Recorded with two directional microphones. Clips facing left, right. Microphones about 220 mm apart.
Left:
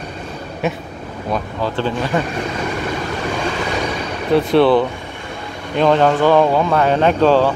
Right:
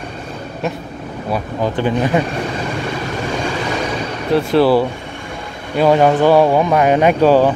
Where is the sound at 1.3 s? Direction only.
15° right (ahead or behind).